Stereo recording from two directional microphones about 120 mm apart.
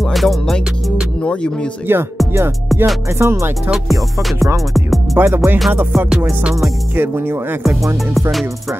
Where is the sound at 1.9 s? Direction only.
20° right (ahead or behind).